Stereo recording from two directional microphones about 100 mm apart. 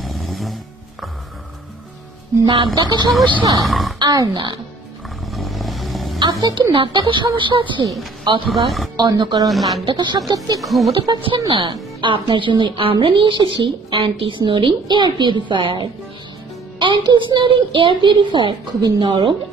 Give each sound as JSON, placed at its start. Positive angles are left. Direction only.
{"t": 0.0, "sound": "music", "side_deg": 0}
{"t": 2.4, "sound": "a woman's voice", "side_deg": -50}
{"t": 3.6, "sound": "speech", "side_deg": 0}
{"t": 4.0, "sound": "a woman's voice", "side_deg": -40}
{"t": 5.3, "sound": "vehicle", "side_deg": 0}
{"t": 6.1, "sound": "a sound", "side_deg": -50}
{"t": 6.7, "sound": "a woman's voice", "side_deg": -55}
{"t": 9.5, "sound": "speech", "side_deg": 0}
{"t": 9.8, "sound": "a woman's voice", "side_deg": -45}
{"t": 10.6, "sound": "speech", "side_deg": 0}
{"t": 11.0, "sound": "a woman's voice", "side_deg": -60}